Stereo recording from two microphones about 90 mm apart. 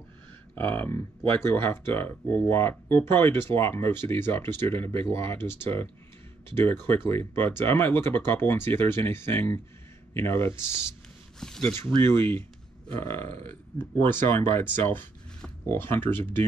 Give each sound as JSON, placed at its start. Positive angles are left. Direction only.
{"t": 0.6, "sound": "speech", "side_deg": 20}
{"t": 11.3, "sound": "a sound", "side_deg": 5}
{"t": 12.8, "sound": "speech", "side_deg": 25}